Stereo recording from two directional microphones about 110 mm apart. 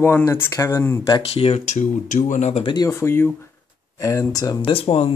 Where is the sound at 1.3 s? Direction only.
70° left (ahead or behind); by 2.6 s 90° left.